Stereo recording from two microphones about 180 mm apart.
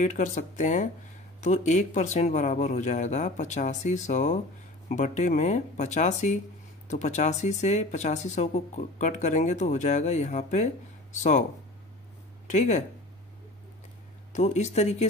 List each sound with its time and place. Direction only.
0.0 s speech: 45° left (ahead or behind)
12.4 s speech: 40° left (ahead or behind)
14.3 s speech: 40° left (ahead or behind)